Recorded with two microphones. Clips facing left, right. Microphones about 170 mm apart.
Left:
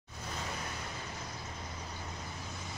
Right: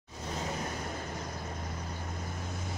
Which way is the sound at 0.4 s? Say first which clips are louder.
Right 5 dB; 45° right (ahead or behind).